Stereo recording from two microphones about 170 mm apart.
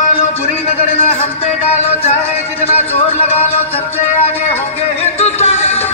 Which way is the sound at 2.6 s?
35° left (ahead or behind).